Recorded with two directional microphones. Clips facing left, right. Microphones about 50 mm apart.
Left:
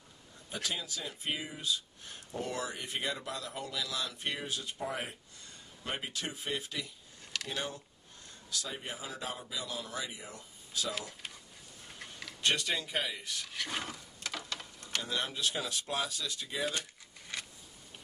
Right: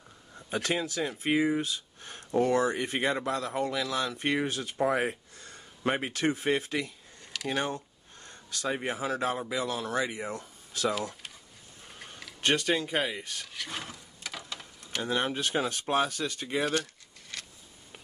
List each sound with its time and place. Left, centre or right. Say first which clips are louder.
0.5 s speech: right 8 dB; right
11.0 s speech: right 6 dB; centre
12.4 s speech: right 5 dB; right
13.5 s speech: left 3 dB; centre
14.2 s a sound: even; centre
15.0 s speech: right 7 dB; right
17.3 s a sound: left 1 dB; centre